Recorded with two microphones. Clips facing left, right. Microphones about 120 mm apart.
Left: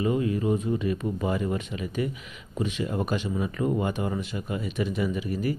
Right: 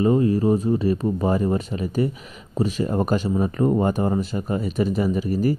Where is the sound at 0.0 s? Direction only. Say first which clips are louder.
Right 7 dB; 35° right (ahead or behind).